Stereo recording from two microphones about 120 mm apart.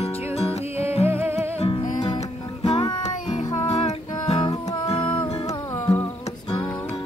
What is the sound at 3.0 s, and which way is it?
Music, 70° left (ahead or behind).